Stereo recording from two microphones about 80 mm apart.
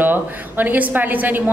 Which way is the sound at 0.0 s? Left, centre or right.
Right.